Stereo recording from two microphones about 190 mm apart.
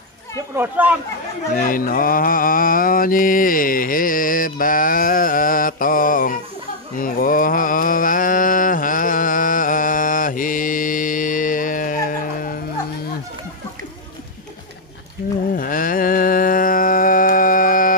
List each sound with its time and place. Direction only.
0.6 s speech: 5° right (ahead or behind)
1.5 s mantra: 45° left (ahead or behind)
15.2 s a sound: 40° left (ahead or behind)